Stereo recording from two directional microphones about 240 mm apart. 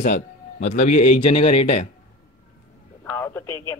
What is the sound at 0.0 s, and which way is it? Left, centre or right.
A man's voice, left.